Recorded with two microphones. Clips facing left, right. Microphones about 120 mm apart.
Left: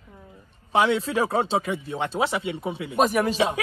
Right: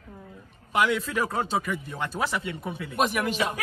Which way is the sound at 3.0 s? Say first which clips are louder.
Left 5 dB; 35° left (ahead or behind).